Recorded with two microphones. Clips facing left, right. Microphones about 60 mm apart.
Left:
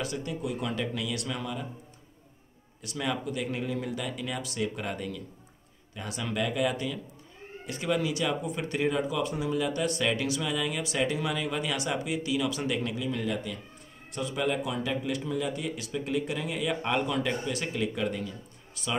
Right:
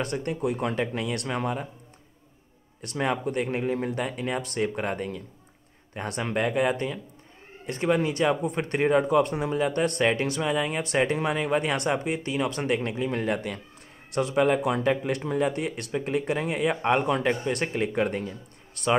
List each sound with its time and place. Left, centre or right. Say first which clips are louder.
0.0 s speech: right 5 dB; right
2.8 s speech: right 5 dB; right
5.9 s speech: right 4 dB; right
18.8 s speech: right 9 dB; right